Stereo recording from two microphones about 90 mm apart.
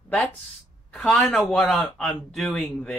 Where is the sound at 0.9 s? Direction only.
10° left (ahead or behind).